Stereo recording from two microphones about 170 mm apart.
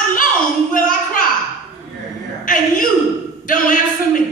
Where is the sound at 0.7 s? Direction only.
50° left (ahead or behind).